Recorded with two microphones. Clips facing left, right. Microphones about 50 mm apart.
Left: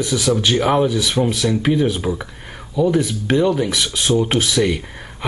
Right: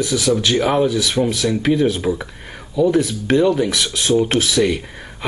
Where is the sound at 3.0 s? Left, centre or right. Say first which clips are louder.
Right 1 dB; centre.